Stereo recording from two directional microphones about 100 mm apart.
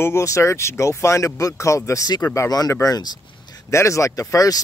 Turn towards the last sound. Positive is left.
turn(degrees=35)  # may be behind; listen again after turning